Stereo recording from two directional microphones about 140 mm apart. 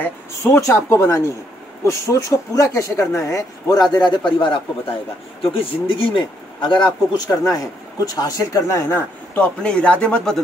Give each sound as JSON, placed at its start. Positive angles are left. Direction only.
{"t": 0.0, "sound": "a man's voice", "side_deg": 20}